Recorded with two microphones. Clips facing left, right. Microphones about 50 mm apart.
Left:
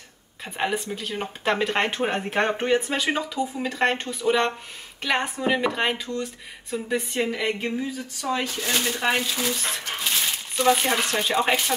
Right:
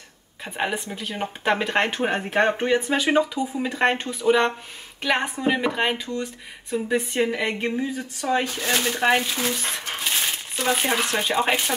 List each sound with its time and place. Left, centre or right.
0.8 s speech: centre
7.2 s speech: centre; by 9.5 s right
9.6 s speech: centre